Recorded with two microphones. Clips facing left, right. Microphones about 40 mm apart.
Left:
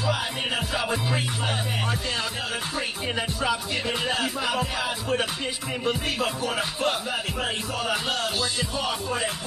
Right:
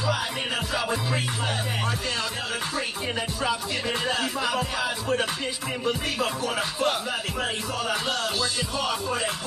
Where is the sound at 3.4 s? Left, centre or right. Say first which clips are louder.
Even; centre.